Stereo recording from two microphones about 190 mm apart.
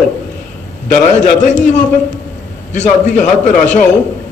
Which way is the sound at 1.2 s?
40° left (ahead or behind).